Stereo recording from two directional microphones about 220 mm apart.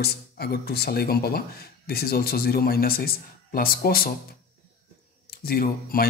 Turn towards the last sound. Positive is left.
turn(degrees=40)  # may be behind; listen again after turning